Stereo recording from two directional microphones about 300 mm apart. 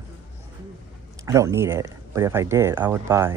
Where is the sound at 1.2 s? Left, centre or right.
Centre.